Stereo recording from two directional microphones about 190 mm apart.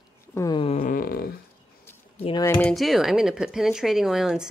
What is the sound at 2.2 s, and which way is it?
Speech, 25° left (ahead or behind).